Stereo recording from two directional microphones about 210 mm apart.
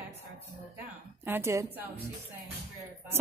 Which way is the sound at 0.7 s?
10° right (ahead or behind).